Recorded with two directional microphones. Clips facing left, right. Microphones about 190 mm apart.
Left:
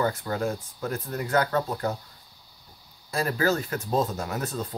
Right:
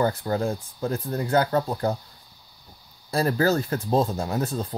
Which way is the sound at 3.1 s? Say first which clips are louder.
Right 3 dB; 35° right (ahead or behind).